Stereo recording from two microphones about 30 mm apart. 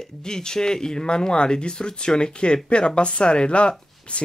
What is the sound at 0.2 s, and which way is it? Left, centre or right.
Speech, left.